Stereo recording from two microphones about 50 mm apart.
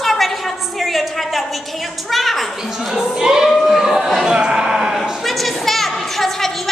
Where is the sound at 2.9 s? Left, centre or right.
Centre.